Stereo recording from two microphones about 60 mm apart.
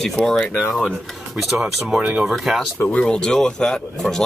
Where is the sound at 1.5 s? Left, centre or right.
Centre.